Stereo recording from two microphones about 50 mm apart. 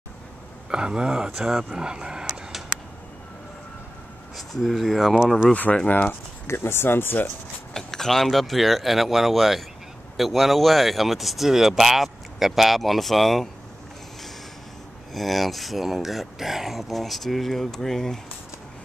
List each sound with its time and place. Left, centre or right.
0.7 s speech: centre
1.7 s speech: centre
4.4 s speech: centre
5.5 s speech: left
6.4 s speech: left
7.7 s speech: centre
15.1 s speech: centre